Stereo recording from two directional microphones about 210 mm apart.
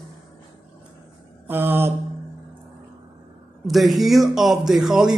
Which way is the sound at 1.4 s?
10° right (ahead or behind).